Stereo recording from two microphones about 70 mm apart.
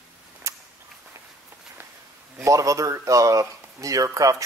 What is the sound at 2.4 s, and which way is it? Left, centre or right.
Speech, right.